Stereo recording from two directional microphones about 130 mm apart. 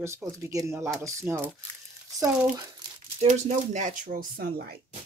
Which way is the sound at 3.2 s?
65° right (ahead or behind).